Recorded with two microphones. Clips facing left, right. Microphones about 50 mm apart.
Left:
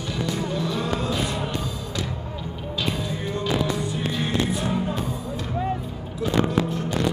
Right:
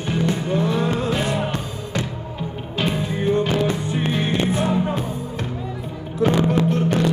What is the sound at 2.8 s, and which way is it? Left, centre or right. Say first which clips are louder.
Music: right 7 dB; right.